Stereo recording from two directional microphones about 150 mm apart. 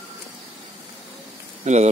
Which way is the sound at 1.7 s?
50° right (ahead or behind).